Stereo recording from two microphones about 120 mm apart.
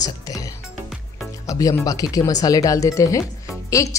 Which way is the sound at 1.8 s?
30° left (ahead or behind).